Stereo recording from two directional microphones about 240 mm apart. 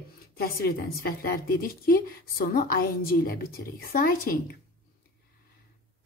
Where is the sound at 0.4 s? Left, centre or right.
Left.